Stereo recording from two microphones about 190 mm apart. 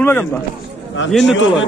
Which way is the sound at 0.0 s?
10° left (ahead or behind).